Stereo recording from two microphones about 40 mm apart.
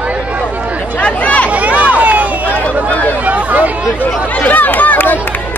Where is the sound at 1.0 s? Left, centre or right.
Left.